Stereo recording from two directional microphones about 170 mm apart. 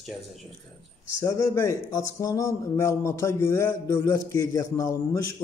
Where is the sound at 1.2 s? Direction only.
15° left (ahead or behind).